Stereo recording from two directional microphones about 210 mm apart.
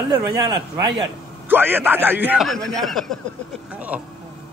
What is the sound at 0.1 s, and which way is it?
A man's voice, 15° right (ahead or behind).